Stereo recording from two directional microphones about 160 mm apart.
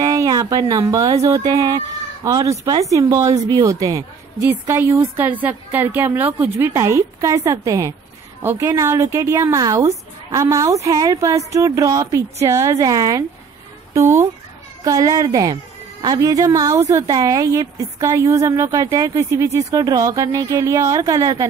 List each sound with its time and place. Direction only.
0.0 s a woman's voice: 20° right (ahead or behind)